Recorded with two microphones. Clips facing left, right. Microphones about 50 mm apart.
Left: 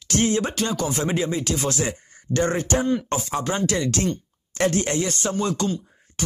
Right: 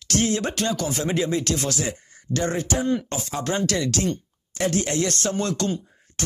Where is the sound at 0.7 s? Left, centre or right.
Centre.